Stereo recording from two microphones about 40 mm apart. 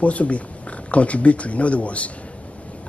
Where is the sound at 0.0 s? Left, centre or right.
Left.